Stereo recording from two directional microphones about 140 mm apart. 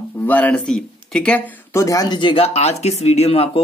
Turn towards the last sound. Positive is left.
turn(degrees=45)  # may be behind; listen again after turning